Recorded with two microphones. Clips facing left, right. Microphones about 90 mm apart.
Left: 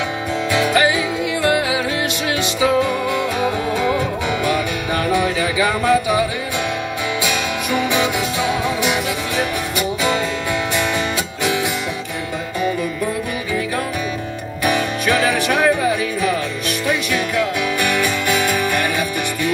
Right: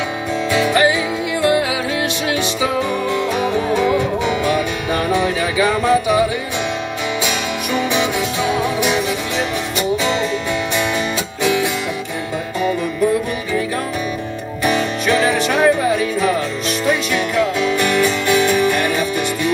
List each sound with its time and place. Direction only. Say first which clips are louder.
0.5 s music: right 1 dB; 20° right (ahead or behind)
2.6 s music: left 5 dB; 20° right (ahead or behind)
7.2 s music: even; 20° right (ahead or behind)
8.6 s music: right 2 dB; 20° left (ahead or behind)
9.4 s music: right 1 dB; 20° right (ahead or behind)
14.6 s music: right 1 dB; 25° right (ahead or behind)